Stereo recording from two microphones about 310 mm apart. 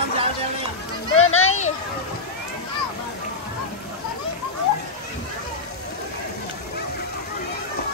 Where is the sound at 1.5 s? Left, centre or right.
Left.